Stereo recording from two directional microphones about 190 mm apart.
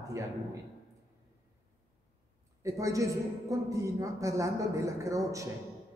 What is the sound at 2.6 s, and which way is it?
Speech, 15° right (ahead or behind).